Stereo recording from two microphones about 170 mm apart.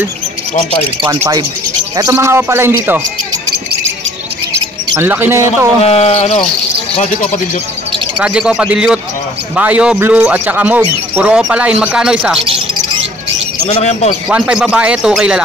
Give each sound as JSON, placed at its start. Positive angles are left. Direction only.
{"t": 1.0, "sound": "speech", "side_deg": -20}
{"t": 4.9, "sound": "speech", "side_deg": -10}
{"t": 5.9, "sound": "speech", "side_deg": 35}
{"t": 8.2, "sound": "speech", "side_deg": -5}
{"t": 13.7, "sound": "speech", "side_deg": 40}
{"t": 14.3, "sound": "speech", "side_deg": -5}